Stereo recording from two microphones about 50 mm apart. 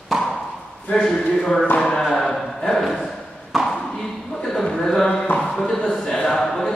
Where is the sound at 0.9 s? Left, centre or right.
Centre.